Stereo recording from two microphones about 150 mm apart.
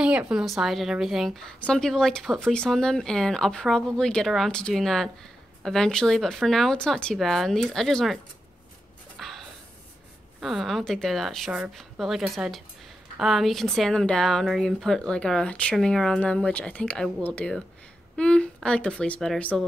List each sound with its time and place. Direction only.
0.0 s a woman's voice: 5° right (ahead or behind)
9.2 s a sound: centre (ahead or behind)
10.4 s a woman's voice: centre (ahead or behind)